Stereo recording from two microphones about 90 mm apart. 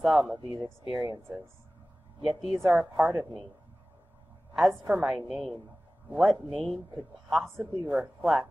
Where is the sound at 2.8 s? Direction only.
25° right (ahead or behind).